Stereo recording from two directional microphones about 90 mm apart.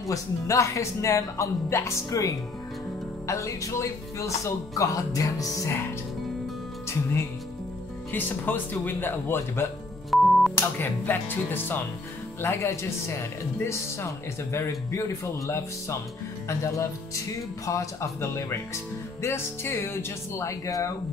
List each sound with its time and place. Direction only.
0.0 s speech: 35° left (ahead or behind)
6.9 s speech: 30° left (ahead or behind)
10.1 s music: centre (ahead or behind)
10.5 s speech: 25° left (ahead or behind)